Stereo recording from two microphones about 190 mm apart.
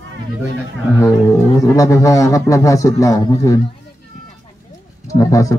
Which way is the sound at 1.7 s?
15° left (ahead or behind).